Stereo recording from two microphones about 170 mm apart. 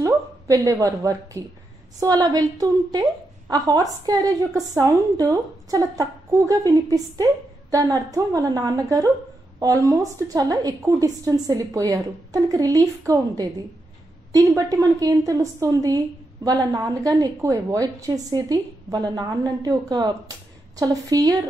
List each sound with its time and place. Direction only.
0.0 s a woman's voice: 20° right (ahead or behind)